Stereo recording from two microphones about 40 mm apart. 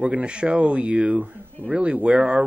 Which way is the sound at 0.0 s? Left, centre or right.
Right.